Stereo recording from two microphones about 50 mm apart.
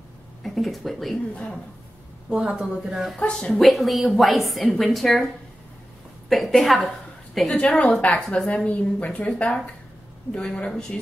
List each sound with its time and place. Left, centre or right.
0.4 s speech: centre
2.2 s speech: centre
3.2 s speech: centre
3.5 s a woman's voice: centre
6.2 s a woman's voice: centre
7.6 s a woman's voice: left; by 11.0 s centre